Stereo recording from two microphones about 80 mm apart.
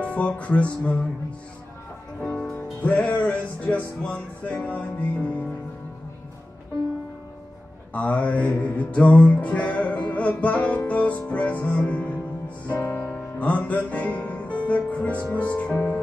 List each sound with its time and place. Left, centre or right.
0.1 s music: centre
2.1 s music: centre
7.9 s music: centre